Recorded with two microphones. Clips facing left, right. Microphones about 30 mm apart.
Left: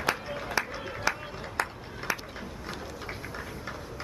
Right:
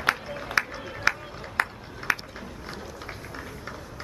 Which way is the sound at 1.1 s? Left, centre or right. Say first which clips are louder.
Right 5 dB; right.